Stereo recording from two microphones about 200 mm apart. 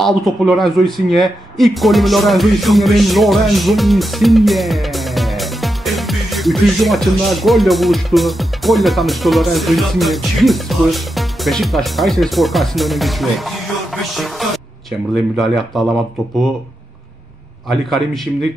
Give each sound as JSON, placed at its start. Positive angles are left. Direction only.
{"t": 0.0, "sound": "speech", "side_deg": 0}
{"t": 17.6, "sound": "speech", "side_deg": 0}